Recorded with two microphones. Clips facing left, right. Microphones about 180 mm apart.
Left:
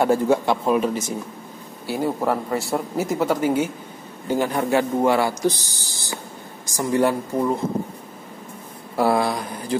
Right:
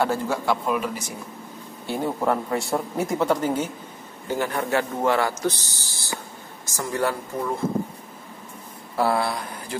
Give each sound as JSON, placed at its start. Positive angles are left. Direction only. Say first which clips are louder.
{"t": 0.0, "sound": "a man's voice", "louder": "left 6 dB", "side_deg": 20}
{"t": 1.9, "sound": "a man's voice", "louder": "left 2 dB", "side_deg": 5}
{"t": 8.9, "sound": "a man's voice", "louder": "left 3 dB", "side_deg": 15}